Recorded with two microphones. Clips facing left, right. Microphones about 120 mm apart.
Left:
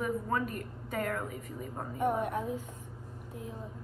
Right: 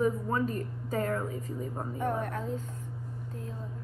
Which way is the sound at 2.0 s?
15° left (ahead or behind).